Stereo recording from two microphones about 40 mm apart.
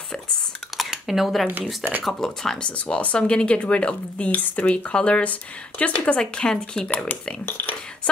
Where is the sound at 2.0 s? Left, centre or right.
Centre.